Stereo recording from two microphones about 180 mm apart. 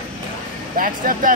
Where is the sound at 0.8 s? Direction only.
50° right (ahead or behind).